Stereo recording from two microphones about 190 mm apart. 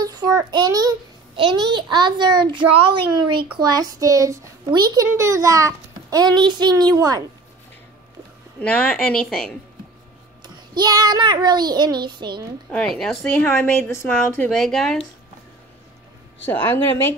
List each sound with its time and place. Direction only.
0.0 s a child's voice: 20° right (ahead or behind)
8.5 s a woman's voice: 5° left (ahead or behind)
10.8 s a child's voice: 20° right (ahead or behind)
12.7 s a woman's voice: centre (ahead or behind)
14.5 s a woman's voice: centre (ahead or behind)
16.4 s a woman's voice: 10° left (ahead or behind)